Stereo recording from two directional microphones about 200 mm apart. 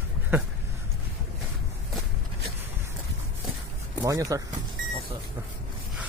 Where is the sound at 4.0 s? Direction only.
15° right (ahead or behind).